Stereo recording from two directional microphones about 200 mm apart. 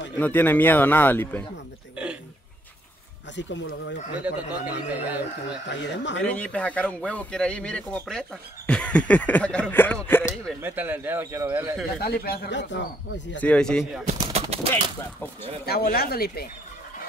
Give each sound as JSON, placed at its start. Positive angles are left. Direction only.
{"t": 0.2, "sound": "speech", "side_deg": 10}
{"t": 3.3, "sound": "speech", "side_deg": 65}
{"t": 4.2, "sound": "speech", "side_deg": -5}
{"t": 5.7, "sound": "speech", "side_deg": 65}
{"t": 6.2, "sound": "speech", "side_deg": 5}
{"t": 10.0, "sound": "a sound", "side_deg": 10}
{"t": 10.6, "sound": "speech", "side_deg": -10}
{"t": 12.0, "sound": "speech", "side_deg": 50}
{"t": 13.4, "sound": "speech", "side_deg": 5}
{"t": 14.3, "sound": "clip-clop", "side_deg": -30}
{"t": 15.6, "sound": "speech", "side_deg": 50}